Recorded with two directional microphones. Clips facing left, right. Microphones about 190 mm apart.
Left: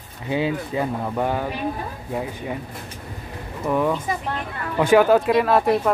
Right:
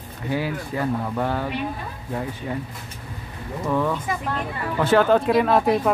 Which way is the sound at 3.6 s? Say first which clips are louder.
Left 2 dB; 15° left (ahead or behind).